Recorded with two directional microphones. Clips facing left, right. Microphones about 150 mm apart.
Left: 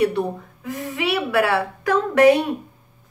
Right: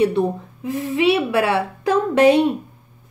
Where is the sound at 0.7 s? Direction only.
25° right (ahead or behind).